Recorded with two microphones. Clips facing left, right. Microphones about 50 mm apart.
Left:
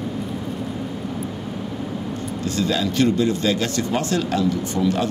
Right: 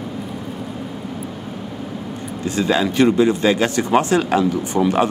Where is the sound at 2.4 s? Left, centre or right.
Right.